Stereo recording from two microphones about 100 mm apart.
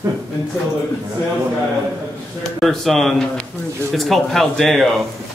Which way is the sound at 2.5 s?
Centre (ahead or behind).